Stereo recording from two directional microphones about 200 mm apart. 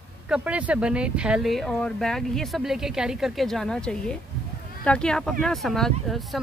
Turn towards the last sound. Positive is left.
turn(degrees=0)  # may be behind; listen again after turning